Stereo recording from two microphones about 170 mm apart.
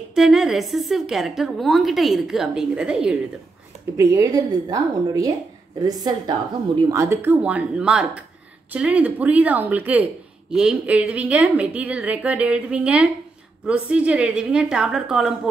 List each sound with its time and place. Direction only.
0.1 s a woman's voice: centre (ahead or behind)
3.9 s a woman's voice: 20° right (ahead or behind)
6.9 s a woman's voice: 15° right (ahead or behind)